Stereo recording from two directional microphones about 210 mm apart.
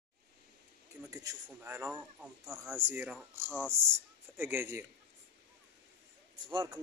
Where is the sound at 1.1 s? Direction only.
15° right (ahead or behind).